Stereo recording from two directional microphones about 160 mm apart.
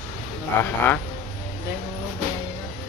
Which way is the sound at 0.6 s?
10° left (ahead or behind).